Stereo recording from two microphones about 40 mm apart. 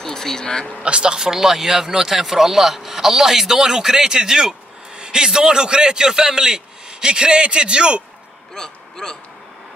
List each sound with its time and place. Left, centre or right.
0.0 s speech: centre
0.8 s speech: right
8.5 s speech: centre